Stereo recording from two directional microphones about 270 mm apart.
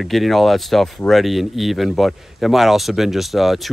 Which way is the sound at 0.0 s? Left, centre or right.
Centre.